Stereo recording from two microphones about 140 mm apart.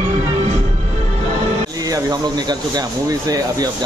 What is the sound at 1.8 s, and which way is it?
Speech, 25° right (ahead or behind).